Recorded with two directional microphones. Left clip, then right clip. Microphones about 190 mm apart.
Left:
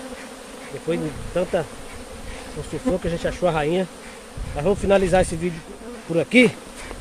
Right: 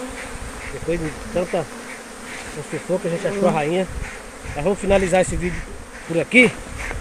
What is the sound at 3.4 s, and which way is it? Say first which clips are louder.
Speech: right 1 dB; 20° left (ahead or behind).